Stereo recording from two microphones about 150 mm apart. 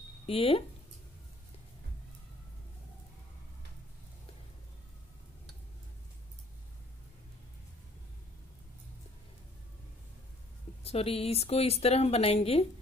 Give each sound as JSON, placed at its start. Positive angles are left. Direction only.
{"t": 0.3, "sound": "a woman's voice", "side_deg": 40}
{"t": 10.8, "sound": "a woman's voice", "side_deg": 40}